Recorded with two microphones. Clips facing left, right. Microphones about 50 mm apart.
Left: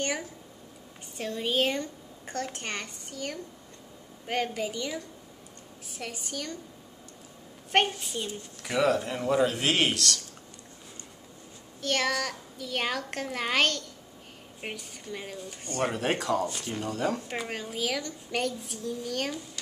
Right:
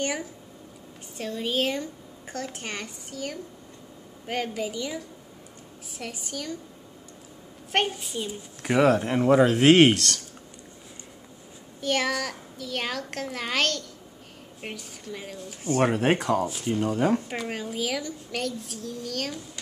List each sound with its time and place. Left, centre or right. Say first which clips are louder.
0.0 s a woman's voice: right 2 dB; centre
7.9 s a woman's voice: right 2 dB; centre
8.6 s speech: right 5 dB; right
11.8 s a woman's voice: right 2 dB; centre
15.8 s speech: right 5 dB; right
17.4 s a woman's voice: right 2 dB; centre